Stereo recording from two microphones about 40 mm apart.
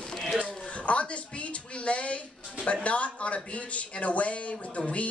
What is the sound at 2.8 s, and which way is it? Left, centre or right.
Speech, left.